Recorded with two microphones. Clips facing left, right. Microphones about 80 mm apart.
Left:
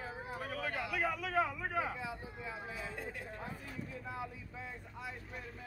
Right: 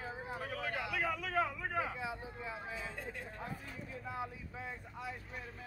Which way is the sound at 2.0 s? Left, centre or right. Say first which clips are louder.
Right 1 dB; right.